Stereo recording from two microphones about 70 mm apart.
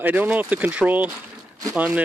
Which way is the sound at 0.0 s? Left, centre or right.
Right.